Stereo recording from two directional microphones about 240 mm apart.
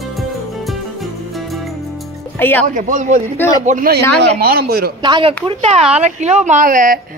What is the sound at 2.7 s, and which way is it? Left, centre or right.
A woman's voice, right.